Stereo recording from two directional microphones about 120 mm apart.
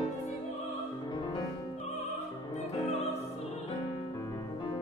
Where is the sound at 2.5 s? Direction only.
60° left (ahead or behind).